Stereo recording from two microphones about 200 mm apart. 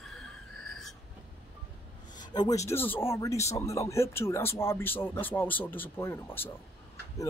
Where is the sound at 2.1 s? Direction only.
20° left (ahead or behind).